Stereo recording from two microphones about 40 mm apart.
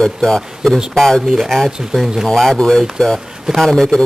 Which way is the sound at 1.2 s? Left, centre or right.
Centre.